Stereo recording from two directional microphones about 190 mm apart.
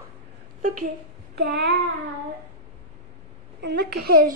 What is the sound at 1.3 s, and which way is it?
Child singing, 60° right (ahead or behind).